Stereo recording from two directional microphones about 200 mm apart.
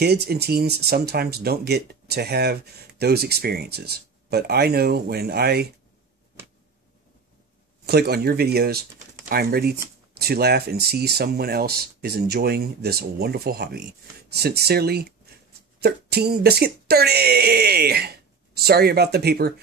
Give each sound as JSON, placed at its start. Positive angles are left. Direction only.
{"t": 0.0, "sound": "speech", "side_deg": -55}
{"t": 7.8, "sound": "speech", "side_deg": -55}